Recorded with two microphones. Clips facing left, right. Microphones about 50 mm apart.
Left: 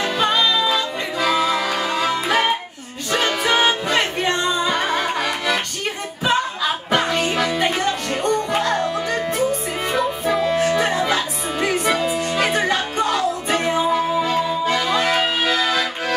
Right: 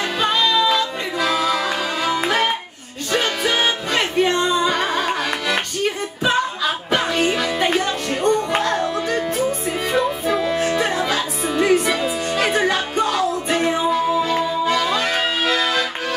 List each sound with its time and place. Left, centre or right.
0.0 s music: centre
13.8 s music: centre
15.1 s music: centre